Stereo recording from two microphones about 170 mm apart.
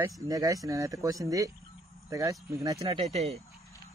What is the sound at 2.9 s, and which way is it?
Speech, 40° right (ahead or behind).